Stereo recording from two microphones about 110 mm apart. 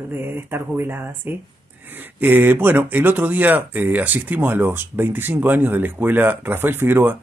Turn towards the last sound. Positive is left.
turn(degrees=-20)  # may be behind; listen again after turning